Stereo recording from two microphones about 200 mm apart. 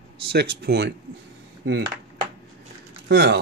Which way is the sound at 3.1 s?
60° right (ahead or behind).